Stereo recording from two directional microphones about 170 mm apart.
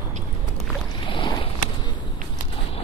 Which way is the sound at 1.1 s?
30° left (ahead or behind).